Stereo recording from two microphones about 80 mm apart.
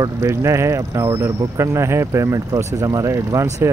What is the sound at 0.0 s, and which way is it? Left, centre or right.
Speech, right.